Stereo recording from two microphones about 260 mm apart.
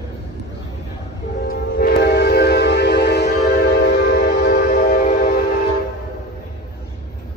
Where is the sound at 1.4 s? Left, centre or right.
Left.